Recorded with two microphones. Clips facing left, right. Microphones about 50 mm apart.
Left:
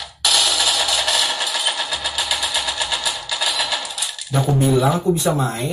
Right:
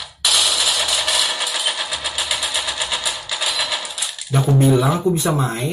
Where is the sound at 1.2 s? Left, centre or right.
Centre.